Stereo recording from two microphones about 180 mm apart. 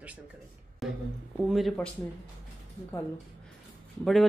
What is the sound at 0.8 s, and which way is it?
Speech, centre (ahead or behind).